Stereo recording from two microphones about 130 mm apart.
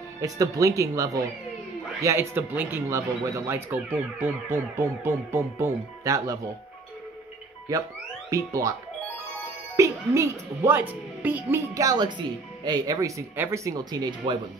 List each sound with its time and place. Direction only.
0.2 s speech: 25° right (ahead or behind)
7.7 s speech: 25° right (ahead or behind)
9.8 s speech: 20° right (ahead or behind)